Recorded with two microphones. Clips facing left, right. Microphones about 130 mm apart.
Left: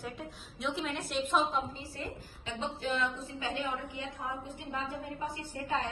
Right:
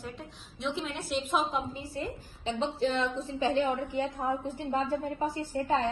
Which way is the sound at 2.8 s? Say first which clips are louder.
Right 2 dB; 30° right (ahead or behind).